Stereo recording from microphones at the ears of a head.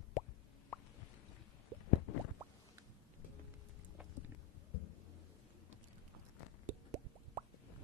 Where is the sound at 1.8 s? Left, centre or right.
Left.